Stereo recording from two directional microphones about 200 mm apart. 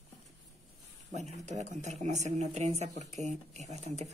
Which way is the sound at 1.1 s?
35° right (ahead or behind).